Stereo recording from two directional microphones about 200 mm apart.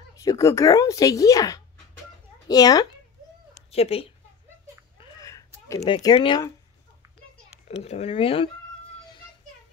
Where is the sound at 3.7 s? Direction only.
30° left (ahead or behind).